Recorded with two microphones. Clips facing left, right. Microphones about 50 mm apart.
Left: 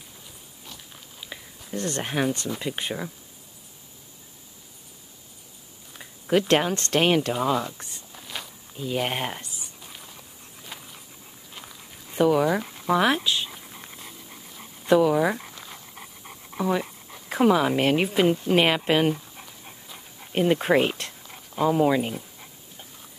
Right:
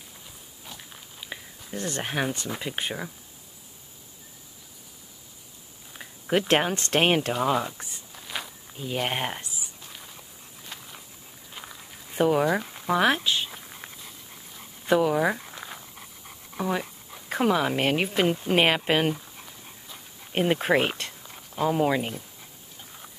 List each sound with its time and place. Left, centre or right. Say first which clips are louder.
0.7 s a sound: right 1 dB; centre
2.6 s speech: left 1 dB; centre
5.9 s speech: left 3 dB; centre
7.8 s a sound: even; centre
11.5 s walk: right 2 dB; centre
12.3 s speech: left 1 dB; centre
12.7 s a sound: left 1 dB; centre
14.9 s speech: left 3 dB; centre
15.5 s dog: right 3 dB; centre
15.9 s dog: left 3 dB; centre
16.5 s speech: left 3 dB; centre
19.6 s dog: left 1 dB; centre
20.5 s speech: left 2 dB; centre